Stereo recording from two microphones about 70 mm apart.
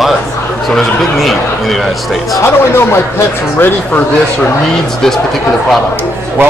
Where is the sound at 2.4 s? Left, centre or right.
Left.